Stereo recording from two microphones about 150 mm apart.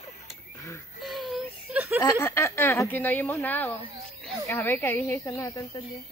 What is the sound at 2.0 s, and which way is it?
A woman's voice, 25° left (ahead or behind).